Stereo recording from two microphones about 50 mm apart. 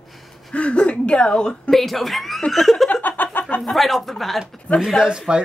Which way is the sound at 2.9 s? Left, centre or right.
Left.